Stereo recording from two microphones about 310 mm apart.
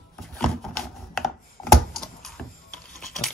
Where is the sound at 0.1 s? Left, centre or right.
Centre.